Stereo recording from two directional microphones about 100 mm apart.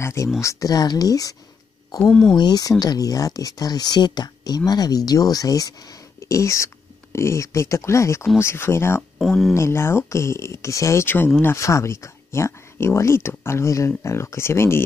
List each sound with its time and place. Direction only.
0.0 s speech: 30° left (ahead or behind)
2.0 s speech: 5° left (ahead or behind)
2.3 s speech: 40° left (ahead or behind); by 9.0 s 25° left (ahead or behind)
9.2 s speech: centre (ahead or behind)
9.5 s speech: 30° left (ahead or behind)